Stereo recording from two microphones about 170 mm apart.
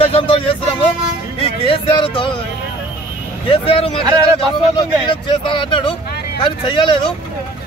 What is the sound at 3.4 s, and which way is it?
Speech, 30° left (ahead or behind).